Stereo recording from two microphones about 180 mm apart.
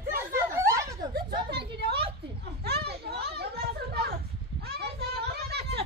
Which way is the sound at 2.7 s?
60° right (ahead or behind).